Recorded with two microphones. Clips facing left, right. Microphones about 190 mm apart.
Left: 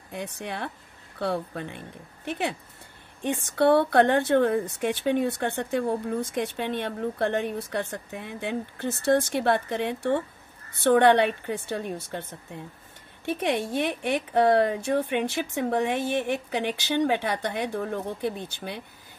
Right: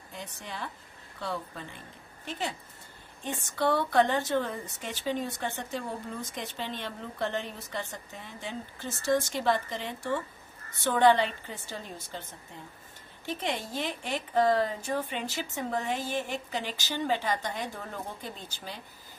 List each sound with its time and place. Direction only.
0.1 s speech: 65° left (ahead or behind)
3.5 s speech: 60° left (ahead or behind)